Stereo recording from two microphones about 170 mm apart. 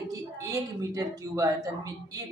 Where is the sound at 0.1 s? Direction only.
20° right (ahead or behind).